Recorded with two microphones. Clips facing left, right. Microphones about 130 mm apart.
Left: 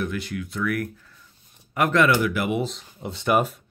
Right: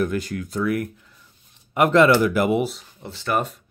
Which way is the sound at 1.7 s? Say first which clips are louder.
Right 4 dB; 25° right (ahead or behind).